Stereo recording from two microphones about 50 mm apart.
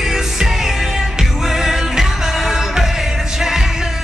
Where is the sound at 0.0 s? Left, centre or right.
Centre.